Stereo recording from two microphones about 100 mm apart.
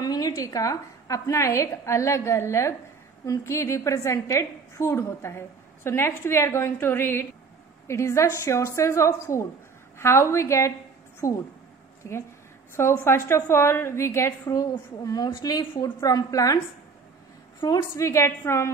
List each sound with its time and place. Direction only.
0.0 s a woman's voice: 40° left (ahead or behind)
17.6 s a woman's voice: 35° left (ahead or behind)